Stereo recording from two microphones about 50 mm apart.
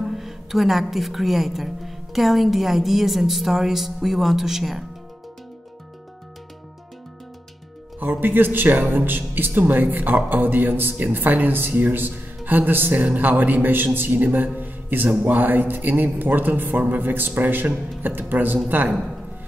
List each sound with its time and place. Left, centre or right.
0.0 s a woman's voice: centre
8.0 s speech: right